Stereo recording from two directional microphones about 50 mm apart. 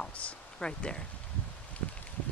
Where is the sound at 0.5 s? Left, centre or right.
Centre.